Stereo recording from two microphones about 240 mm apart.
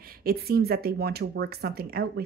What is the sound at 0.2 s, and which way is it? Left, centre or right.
Speech, right.